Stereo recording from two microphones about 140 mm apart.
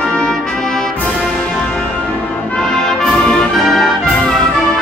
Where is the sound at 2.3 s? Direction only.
10° left (ahead or behind).